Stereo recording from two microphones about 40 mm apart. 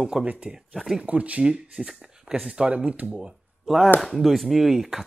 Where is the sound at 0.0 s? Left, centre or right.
Centre.